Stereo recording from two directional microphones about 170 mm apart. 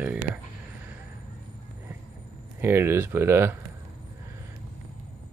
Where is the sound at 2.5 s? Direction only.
15° right (ahead or behind).